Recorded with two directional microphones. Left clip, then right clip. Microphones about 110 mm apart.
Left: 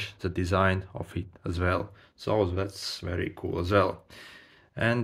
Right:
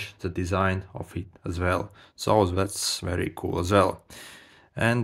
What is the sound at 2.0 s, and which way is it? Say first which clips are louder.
Speech: right 5 dB; 90° right.